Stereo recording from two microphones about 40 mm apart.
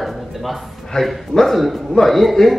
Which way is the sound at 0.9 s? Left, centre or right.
Centre.